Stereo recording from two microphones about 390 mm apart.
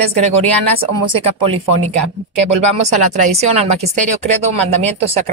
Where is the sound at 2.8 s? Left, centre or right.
Centre.